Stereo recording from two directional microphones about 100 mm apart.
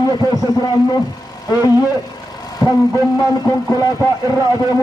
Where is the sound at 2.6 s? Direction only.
40° left (ahead or behind).